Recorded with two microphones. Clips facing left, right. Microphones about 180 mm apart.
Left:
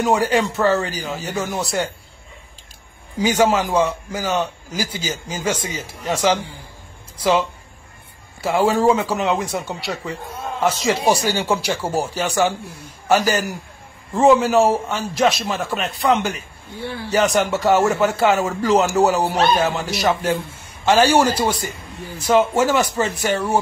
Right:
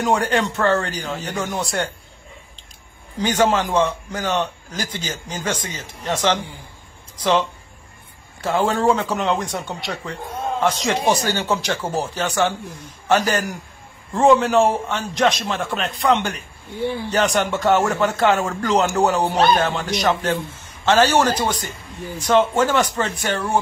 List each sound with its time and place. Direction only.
0.0 s a man's voice: 5° left (ahead or behind)
3.2 s a man's voice: 10° left (ahead or behind)
16.8 s a man's voice: 15° right (ahead or behind)
17.1 s a man's voice: 5° left (ahead or behind)